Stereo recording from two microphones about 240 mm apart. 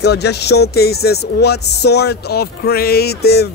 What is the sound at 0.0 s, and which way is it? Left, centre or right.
Speech, left.